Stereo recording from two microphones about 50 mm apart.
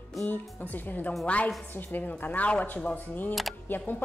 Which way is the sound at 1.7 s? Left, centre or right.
Left.